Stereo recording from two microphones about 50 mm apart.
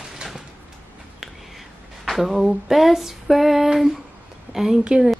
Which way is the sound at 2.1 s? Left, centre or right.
Centre.